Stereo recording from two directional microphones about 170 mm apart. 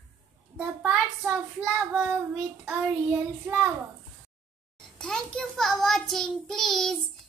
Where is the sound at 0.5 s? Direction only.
Centre (ahead or behind).